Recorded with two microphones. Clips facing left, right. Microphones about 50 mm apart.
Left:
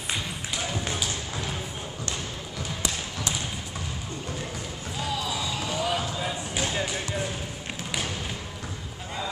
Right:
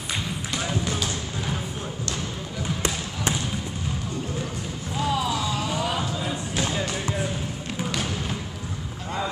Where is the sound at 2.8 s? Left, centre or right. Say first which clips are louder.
Right 3 dB; right.